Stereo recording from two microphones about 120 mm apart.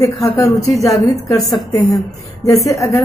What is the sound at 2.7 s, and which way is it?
Speech, 25° left (ahead or behind).